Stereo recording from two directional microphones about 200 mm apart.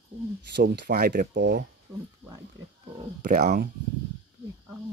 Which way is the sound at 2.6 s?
70° right (ahead or behind).